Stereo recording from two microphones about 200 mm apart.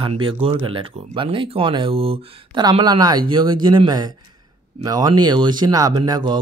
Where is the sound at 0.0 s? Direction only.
25° right (ahead or behind).